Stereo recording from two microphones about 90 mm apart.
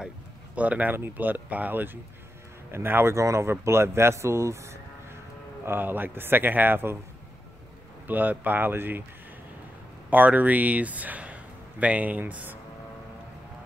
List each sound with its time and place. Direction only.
0.6 s speech: 15° right (ahead or behind); by 5.2 s 30° right (ahead or behind)
5.7 s speech: 20° right (ahead or behind)
8.1 s speech: 20° right (ahead or behind)
10.0 s speech: 20° right (ahead or behind)